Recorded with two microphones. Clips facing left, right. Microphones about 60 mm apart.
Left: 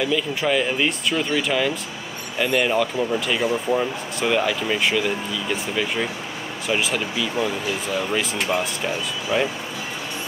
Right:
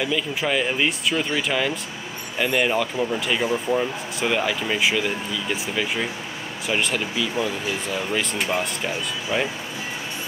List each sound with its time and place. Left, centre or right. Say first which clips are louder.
0.0 s speech: left 2 dB; centre